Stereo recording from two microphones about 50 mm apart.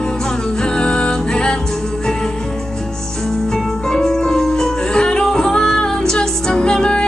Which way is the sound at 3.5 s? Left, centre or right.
Centre.